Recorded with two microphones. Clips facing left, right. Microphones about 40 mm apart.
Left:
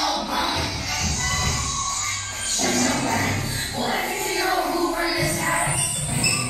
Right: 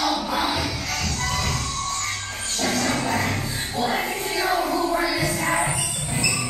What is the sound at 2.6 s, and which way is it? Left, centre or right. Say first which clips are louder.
Dog: left 1 dB; centre.